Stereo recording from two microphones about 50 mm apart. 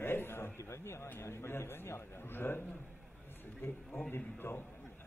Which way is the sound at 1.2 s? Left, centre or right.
Left.